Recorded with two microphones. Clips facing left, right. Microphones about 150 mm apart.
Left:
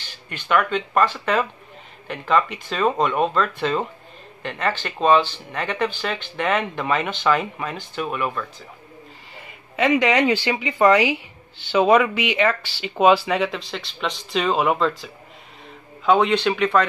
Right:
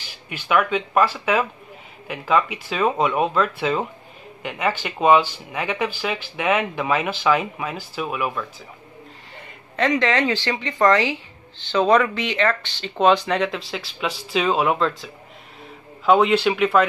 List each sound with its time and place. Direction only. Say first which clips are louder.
0.0 s speech: right 1 dB; 10° right (ahead or behind)
9.8 s speech: left 2 dB; 10° left (ahead or behind)
16.1 s a man's voice: right 1 dB; 5° right (ahead or behind)